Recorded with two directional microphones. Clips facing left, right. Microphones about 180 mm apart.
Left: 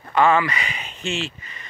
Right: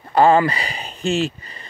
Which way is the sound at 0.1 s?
35° right (ahead or behind).